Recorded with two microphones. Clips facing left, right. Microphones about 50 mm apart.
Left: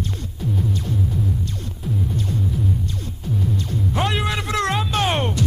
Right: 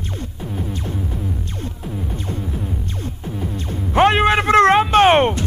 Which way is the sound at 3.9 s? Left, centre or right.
Right.